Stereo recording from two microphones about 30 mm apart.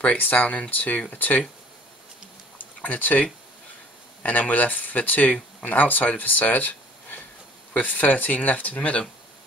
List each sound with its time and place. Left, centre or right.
0.2 s speech: left
1.1 s speech: left
2.8 s speech: left
4.3 s speech: left
5.8 s speech: left